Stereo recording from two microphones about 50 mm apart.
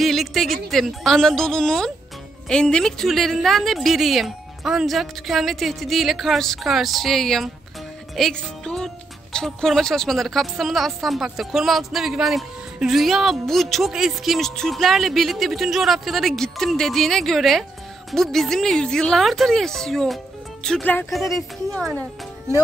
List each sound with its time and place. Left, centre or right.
0.0 s a woman's voice: centre
8.3 s a woman's voice: centre
19.1 s a woman's voice: centre
21.1 s a woman's voice: centre